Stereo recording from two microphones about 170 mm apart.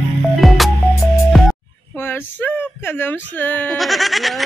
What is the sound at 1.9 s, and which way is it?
Speech, 15° left (ahead or behind).